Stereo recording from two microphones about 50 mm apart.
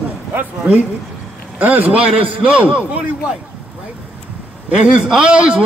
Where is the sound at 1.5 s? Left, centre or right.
Right.